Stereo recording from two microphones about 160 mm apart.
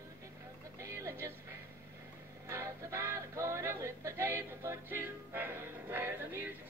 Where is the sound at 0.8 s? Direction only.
20° right (ahead or behind).